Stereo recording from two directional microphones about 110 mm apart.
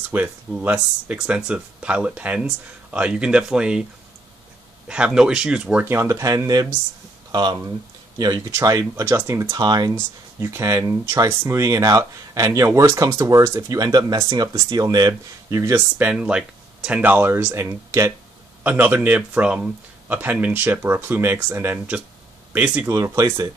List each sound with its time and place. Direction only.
0.1 s speech: 20° right (ahead or behind)
4.8 s speech: 10° right (ahead or behind)
5.9 s speech: 25° right (ahead or behind)
8.5 s speech: 25° right (ahead or behind)
10.4 s speech: 25° right (ahead or behind)
15.7 s speech: 15° right (ahead or behind)
22.8 s speech: 30° right (ahead or behind)